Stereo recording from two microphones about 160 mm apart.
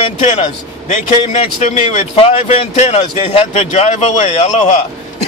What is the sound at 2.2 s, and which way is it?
Speech, 35° left (ahead or behind).